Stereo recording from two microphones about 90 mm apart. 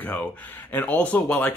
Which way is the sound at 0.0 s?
20° left (ahead or behind).